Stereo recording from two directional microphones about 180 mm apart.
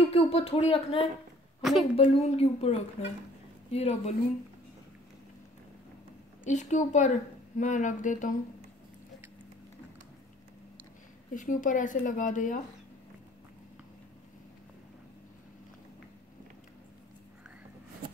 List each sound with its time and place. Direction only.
0.1 s speech: 35° left (ahead or behind)
1.6 s a woman's voice: centre (ahead or behind)
2.0 s speech: 35° left (ahead or behind)
6.4 s speech: 40° left (ahead or behind)
11.3 s speech: 45° left (ahead or behind)